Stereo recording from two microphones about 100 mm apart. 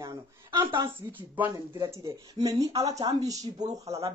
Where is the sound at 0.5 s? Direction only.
50° right (ahead or behind).